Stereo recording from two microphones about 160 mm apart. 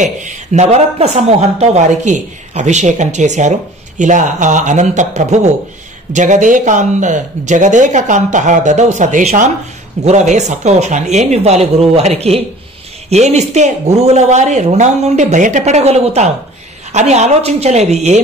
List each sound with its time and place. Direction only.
0.0 s speech: 50° right (ahead or behind)